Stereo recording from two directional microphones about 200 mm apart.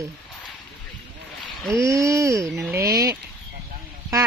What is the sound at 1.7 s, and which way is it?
Speech, 15° right (ahead or behind).